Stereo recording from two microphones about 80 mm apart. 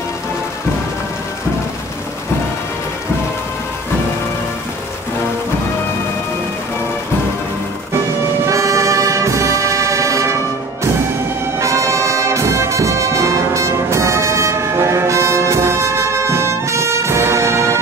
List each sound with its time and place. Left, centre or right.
8.5 s brass instrument: right